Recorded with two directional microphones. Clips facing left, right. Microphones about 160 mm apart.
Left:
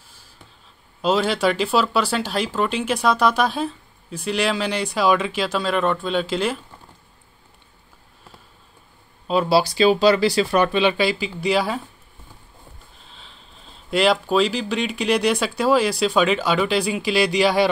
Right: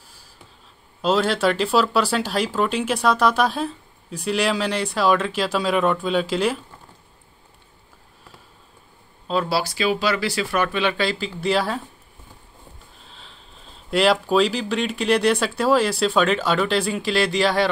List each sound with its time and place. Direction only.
1.0 s speech: centre (ahead or behind)
9.3 s speech: 15° left (ahead or behind)
9.8 s speech: 30° left (ahead or behind)
11.1 s speech: 5° left (ahead or behind)
13.0 s sniff: centre (ahead or behind)
13.8 s speech: 5° right (ahead or behind)